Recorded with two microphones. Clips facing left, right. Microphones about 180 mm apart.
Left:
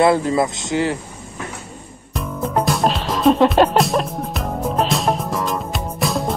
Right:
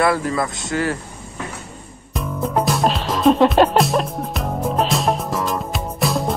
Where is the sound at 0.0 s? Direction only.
25° left (ahead or behind).